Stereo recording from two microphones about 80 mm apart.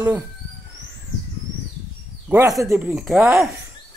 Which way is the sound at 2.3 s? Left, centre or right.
Right.